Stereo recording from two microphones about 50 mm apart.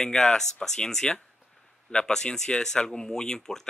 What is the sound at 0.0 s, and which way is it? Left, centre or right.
Speech, centre.